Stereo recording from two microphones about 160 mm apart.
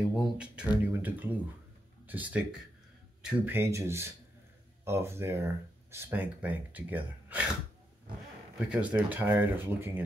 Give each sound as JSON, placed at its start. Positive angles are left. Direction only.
{"t": 0.1, "sound": "speech", "side_deg": -5}
{"t": 8.5, "sound": "speech", "side_deg": -5}